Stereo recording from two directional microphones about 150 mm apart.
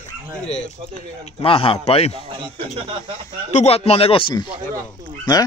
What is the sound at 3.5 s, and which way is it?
Speech, 45° left (ahead or behind).